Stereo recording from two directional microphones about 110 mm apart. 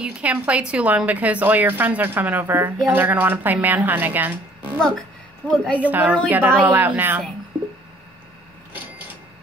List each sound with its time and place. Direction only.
0.0 s a woman's voice: 10° right (ahead or behind)
4.7 s speech: 5° left (ahead or behind)
5.8 s a woman's voice: 15° right (ahead or behind)
7.5 s squish: 10° right (ahead or behind)